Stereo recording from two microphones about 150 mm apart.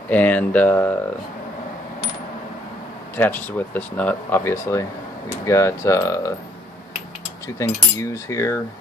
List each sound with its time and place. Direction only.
0.1 s speech: 10° left (ahead or behind)
3.2 s speech: 10° left (ahead or behind)
5.4 s cutlery: 20° left (ahead or behind)
7.4 s cutlery: 20° left (ahead or behind)